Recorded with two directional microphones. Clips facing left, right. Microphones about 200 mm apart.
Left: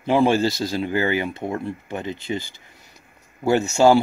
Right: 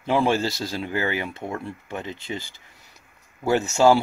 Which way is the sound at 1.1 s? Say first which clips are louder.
Left 5 dB; centre (ahead or behind).